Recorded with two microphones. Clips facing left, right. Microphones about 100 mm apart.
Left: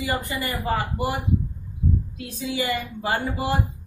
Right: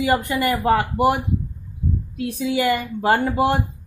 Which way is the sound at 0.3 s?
65° right (ahead or behind).